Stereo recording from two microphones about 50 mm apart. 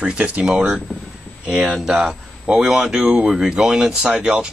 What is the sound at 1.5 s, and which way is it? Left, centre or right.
Speech, centre.